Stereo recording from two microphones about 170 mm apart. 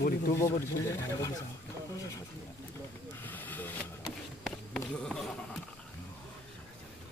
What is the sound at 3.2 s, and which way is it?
Hiss, 10° left (ahead or behind).